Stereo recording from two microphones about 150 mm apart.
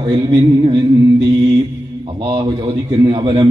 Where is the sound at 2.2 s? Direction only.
30° right (ahead or behind).